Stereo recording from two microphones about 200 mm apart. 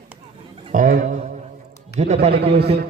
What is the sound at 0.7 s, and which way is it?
Speech, 40° right (ahead or behind).